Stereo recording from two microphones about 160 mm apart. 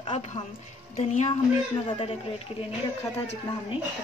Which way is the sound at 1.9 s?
35° left (ahead or behind).